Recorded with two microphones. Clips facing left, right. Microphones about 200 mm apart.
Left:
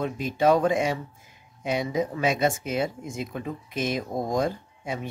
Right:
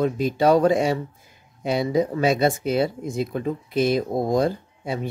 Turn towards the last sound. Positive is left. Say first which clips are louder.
# right 4 dB
turn(degrees=-35)  # may be behind; listen again after turning